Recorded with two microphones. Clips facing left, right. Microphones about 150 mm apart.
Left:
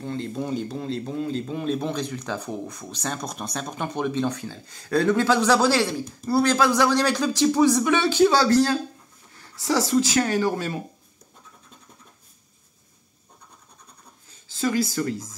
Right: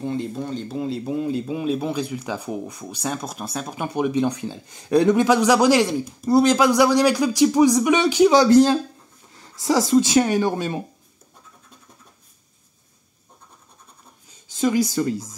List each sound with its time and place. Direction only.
0.0 s speech: 15° right (ahead or behind)
0.4 s speech: 5° left (ahead or behind)
0.7 s speech: 5° right (ahead or behind)
14.2 s speech: 15° right (ahead or behind)